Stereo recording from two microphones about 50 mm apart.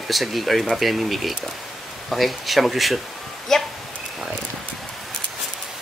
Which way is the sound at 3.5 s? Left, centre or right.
Centre.